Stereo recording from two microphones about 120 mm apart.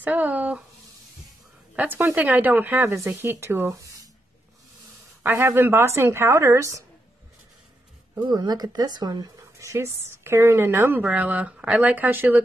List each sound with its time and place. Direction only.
0.0 s speech: 15° right (ahead or behind)
1.8 s speech: 15° right (ahead or behind)
5.2 s speech: 20° right (ahead or behind)
8.1 s speech: 35° right (ahead or behind); by 12.4 s 15° right (ahead or behind)